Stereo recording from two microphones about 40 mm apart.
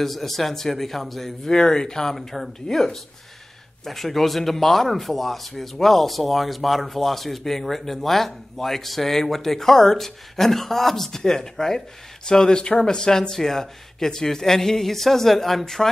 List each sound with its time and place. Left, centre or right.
0.0 s speech: centre
2.1 s speech: centre